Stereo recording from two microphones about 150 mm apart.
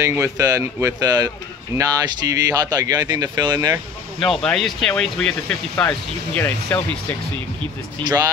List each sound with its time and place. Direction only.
0.0 s speech: 20° right (ahead or behind)
3.5 s speech: 15° right (ahead or behind)
4.2 s speech: 5° left (ahead or behind)
8.0 s speech: 25° right (ahead or behind)